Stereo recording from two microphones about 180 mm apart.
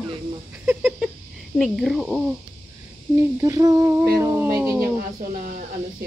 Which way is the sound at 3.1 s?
20° right (ahead or behind).